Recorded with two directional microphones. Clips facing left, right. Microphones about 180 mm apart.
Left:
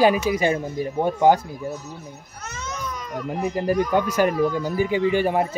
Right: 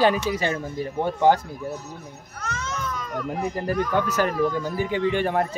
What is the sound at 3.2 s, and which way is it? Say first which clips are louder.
Speech: left 3 dB; centre (ahead or behind).